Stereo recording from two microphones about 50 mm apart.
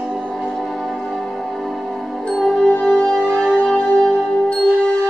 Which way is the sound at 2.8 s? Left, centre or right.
Centre.